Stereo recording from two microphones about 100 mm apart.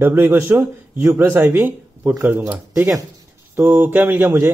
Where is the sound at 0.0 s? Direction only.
25° right (ahead or behind).